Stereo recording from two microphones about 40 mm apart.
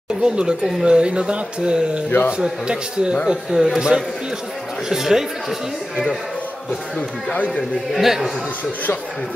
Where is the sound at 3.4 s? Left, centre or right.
Centre.